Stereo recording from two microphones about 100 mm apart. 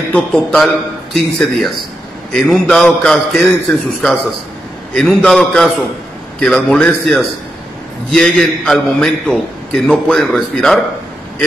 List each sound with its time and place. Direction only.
0.1 s a man's voice: 10° left (ahead or behind)